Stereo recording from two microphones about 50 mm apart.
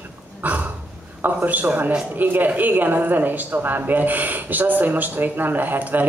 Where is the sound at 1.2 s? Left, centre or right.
Right.